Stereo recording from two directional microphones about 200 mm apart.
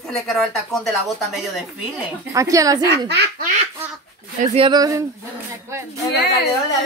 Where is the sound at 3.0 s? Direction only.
55° right (ahead or behind).